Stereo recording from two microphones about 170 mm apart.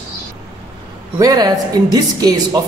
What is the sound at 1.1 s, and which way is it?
Speech, 20° right (ahead or behind).